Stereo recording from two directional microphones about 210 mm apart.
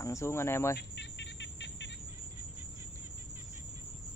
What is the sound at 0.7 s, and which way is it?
Bird, 55° left (ahead or behind).